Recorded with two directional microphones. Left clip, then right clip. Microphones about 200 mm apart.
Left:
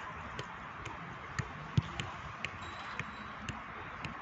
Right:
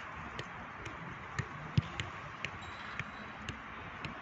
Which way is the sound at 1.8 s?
40° left (ahead or behind).